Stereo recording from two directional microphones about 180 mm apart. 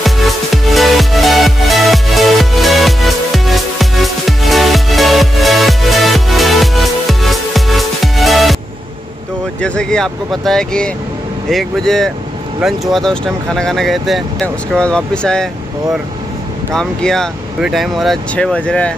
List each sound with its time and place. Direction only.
0.0 s music: centre (ahead or behind)
9.6 s speech: 5° left (ahead or behind)
16.7 s speech: 5° left (ahead or behind)